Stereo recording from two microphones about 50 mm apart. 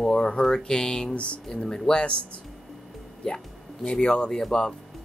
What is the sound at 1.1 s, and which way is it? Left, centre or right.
Speech, left.